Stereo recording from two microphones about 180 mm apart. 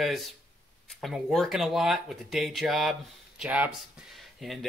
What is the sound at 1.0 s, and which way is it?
Speech, centre (ahead or behind).